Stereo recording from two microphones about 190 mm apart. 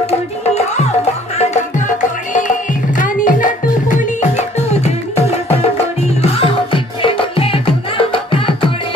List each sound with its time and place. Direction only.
1.4 s music: 40° left (ahead or behind)